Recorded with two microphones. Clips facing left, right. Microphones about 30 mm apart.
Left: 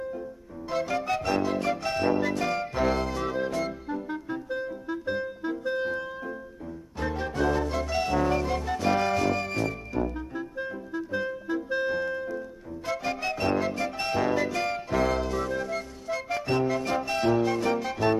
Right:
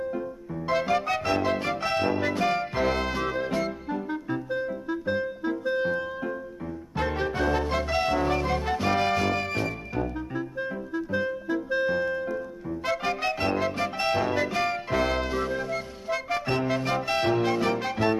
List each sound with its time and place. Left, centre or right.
0.1 s music: right
1.0 s music: right
1.4 s music: right
5.0 s music: right
13.7 s music: right
17.4 s music: right